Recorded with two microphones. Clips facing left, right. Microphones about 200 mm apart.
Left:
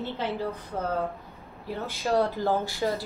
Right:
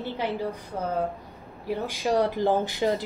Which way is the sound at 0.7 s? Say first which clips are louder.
Right 1 dB; 15° right (ahead or behind).